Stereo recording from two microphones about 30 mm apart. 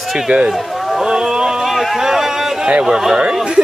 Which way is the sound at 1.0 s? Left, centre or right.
Right.